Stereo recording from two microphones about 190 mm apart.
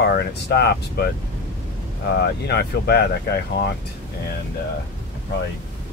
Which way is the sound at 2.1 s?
60° left (ahead or behind).